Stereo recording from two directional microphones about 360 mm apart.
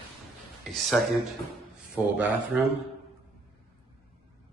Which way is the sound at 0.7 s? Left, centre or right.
Centre.